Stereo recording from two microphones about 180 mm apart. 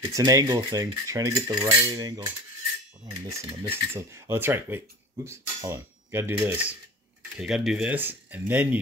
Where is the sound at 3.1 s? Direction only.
20° right (ahead or behind).